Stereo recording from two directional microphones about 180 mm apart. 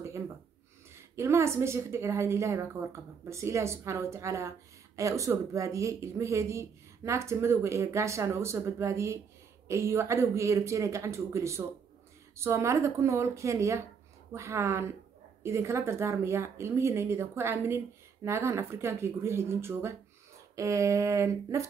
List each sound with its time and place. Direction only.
0.9 s a woman's voice: 15° right (ahead or behind)